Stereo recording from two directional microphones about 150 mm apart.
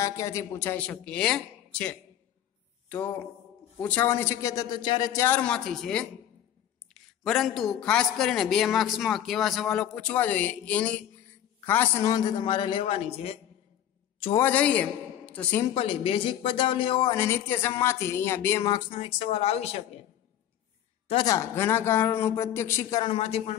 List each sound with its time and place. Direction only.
0.0 s a man's voice: 20° left (ahead or behind)
5.2 s a man's voice: 10° left (ahead or behind)
12.0 s speech: 25° left (ahead or behind); by 13.4 s 40° left (ahead or behind)
14.4 s a man's voice: 10° left (ahead or behind)
15.7 s speech: 35° left (ahead or behind)
17.1 s a man's voice: 15° left (ahead or behind)
18.9 s speech: 40° left (ahead or behind)
21.3 s a man's voice: 20° left (ahead or behind)
23.1 s speech: 45° left (ahead or behind)